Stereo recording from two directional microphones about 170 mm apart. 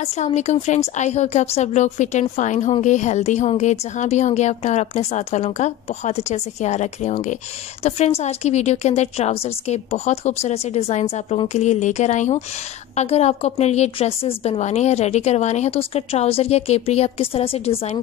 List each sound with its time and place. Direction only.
0.0 s a woman's voice: 40° left (ahead or behind)